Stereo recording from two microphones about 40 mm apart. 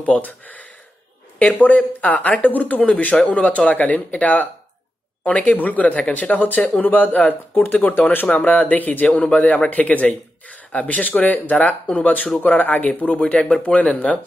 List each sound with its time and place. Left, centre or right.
0.0 s a man's voice: left
8.3 s a man's voice: left
9.0 s a man's voice: left
13.1 s speech: left
13.6 s a man's voice: left